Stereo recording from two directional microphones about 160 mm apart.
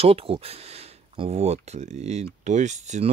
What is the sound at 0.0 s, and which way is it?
Speech, 35° right (ahead or behind).